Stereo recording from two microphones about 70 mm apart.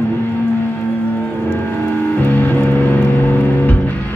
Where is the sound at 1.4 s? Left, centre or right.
Left.